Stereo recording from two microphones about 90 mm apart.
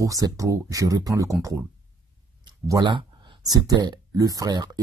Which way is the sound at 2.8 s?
65° right (ahead or behind).